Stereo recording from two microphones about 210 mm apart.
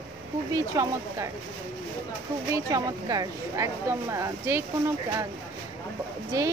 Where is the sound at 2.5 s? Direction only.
15° right (ahead or behind).